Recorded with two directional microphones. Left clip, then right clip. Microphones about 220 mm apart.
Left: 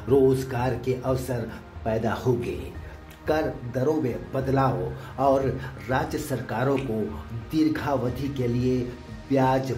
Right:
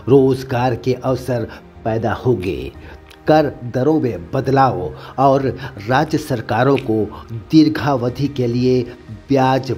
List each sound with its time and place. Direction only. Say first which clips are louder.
0.1 s a man's voice: right 7 dB; 35° right (ahead or behind)